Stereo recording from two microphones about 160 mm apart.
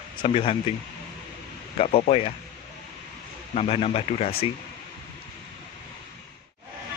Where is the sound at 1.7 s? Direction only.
40° left (ahead or behind).